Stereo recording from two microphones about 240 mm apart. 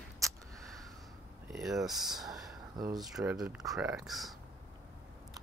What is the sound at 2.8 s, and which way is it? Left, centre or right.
Speech, centre.